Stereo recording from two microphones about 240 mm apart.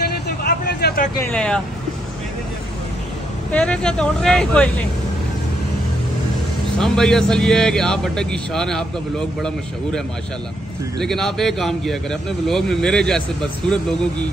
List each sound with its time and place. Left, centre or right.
0.4 s a sound: left
1.3 s a man's voice: centre
3.5 s a man's voice: centre
6.8 s a man's voice: centre
11.0 s a man's voice: centre